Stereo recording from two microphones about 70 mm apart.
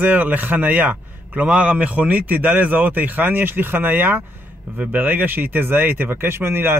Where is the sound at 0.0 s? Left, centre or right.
Right.